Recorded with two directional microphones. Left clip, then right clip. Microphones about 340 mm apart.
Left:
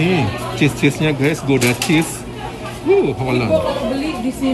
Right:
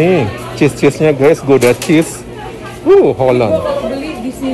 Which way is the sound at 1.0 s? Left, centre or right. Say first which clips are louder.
Right 9 dB; centre.